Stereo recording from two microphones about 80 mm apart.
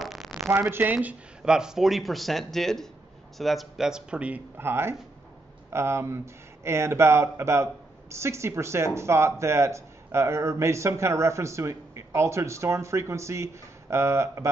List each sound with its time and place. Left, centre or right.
0.0 s a sound: centre
0.5 s speech: right
4.6 s speech: right